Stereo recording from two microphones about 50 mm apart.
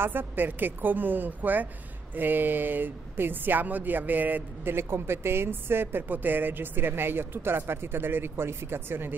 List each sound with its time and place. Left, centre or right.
0.0 s speech: right
4.7 s a woman's voice: right